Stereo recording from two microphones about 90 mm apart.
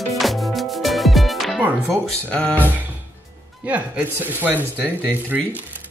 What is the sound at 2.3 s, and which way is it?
Speech, 10° left (ahead or behind).